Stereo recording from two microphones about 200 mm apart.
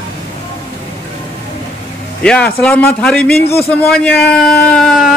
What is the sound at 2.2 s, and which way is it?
Speech, 5° left (ahead or behind).